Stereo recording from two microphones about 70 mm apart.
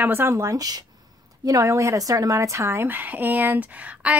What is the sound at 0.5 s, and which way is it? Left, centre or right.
Speech, right.